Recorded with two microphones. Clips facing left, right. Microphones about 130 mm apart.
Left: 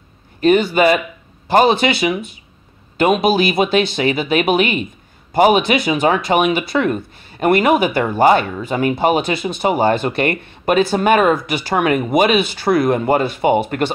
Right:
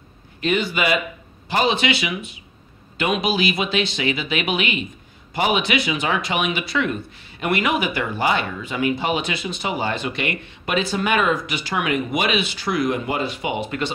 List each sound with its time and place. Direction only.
0.4 s speech: 45° left (ahead or behind)